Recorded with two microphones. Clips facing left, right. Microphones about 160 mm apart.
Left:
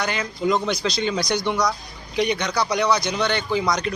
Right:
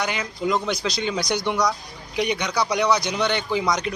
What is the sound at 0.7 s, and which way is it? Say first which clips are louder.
A man's voice: left 2 dB; 10° right (ahead or behind).